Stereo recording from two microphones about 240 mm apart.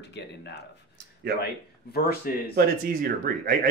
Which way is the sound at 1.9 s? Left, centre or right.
Left.